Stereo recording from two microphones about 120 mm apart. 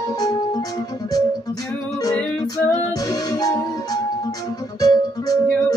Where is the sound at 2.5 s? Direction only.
30° left (ahead or behind).